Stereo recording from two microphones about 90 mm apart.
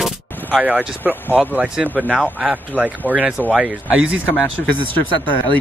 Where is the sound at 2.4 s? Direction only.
20° right (ahead or behind).